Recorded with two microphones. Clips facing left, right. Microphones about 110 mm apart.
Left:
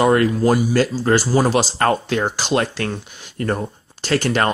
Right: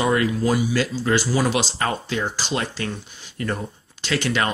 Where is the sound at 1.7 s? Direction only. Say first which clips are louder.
Left 6 dB; 55° left (ahead or behind).